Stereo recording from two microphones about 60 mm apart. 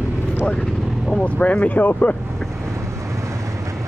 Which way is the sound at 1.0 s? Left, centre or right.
Centre.